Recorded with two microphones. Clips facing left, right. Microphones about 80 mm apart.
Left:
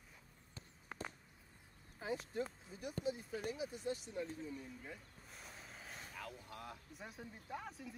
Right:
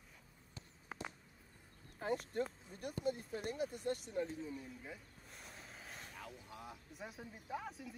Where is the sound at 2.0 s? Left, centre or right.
Right.